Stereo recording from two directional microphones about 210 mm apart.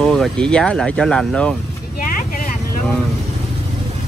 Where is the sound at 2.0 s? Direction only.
40° left (ahead or behind).